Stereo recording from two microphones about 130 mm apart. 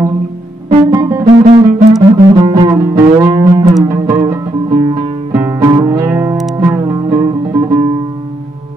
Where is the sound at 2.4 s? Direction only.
35° right (ahead or behind).